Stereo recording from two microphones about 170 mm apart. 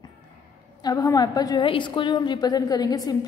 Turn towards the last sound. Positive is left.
turn(degrees=20)  # may be behind; listen again after turning